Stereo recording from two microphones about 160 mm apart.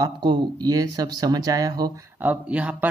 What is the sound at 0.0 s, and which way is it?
Speech, 25° right (ahead or behind).